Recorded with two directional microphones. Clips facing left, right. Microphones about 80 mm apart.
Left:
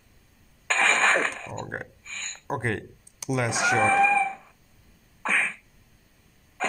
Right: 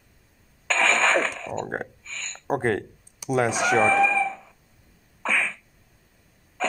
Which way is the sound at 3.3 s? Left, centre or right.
Right.